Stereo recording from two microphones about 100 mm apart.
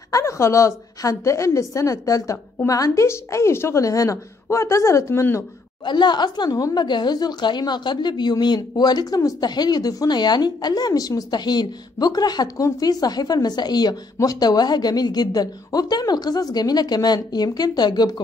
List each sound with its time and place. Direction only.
0.1 s a woman's voice: 30° left (ahead or behind)
5.9 s a woman's voice: 50° left (ahead or behind)